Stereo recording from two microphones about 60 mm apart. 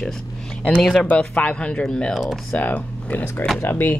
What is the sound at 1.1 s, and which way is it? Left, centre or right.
Speech, centre.